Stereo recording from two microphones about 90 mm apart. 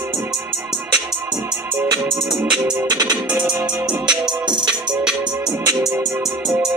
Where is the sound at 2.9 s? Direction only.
45° right (ahead or behind).